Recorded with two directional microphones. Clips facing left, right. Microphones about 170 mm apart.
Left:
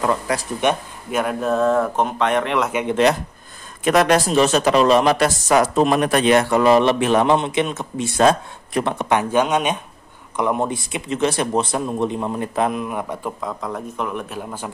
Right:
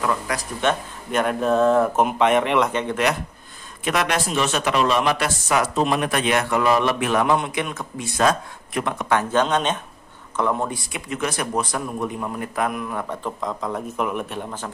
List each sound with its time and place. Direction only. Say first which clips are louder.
0.0 s a man's voice: left 3 dB; 30° left (ahead or behind)
1.1 s speech: even; centre (ahead or behind)
2.7 s a man's voice: left 3 dB; 10° left (ahead or behind)
3.8 s a man's voice: left 7 dB; 40° left (ahead or behind)
9.1 s a man's voice: left 2 dB; 15° left (ahead or behind)